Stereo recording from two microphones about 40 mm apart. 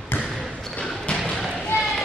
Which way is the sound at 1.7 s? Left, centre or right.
Left.